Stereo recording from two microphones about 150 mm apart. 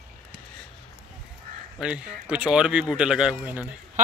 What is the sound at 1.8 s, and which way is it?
Speech, 5° right (ahead or behind).